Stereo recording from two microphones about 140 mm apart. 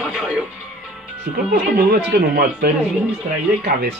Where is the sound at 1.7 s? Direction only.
90° right.